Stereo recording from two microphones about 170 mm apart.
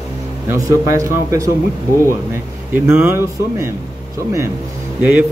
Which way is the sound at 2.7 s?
10° right (ahead or behind).